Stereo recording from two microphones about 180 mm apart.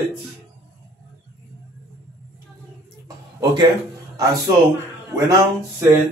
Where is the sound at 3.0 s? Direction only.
25° right (ahead or behind).